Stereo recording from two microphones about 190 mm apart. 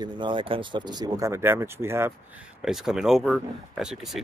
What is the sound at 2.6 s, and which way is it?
Speech, centre (ahead or behind).